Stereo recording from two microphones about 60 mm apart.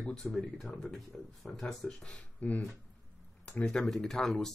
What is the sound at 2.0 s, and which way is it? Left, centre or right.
Speech, centre.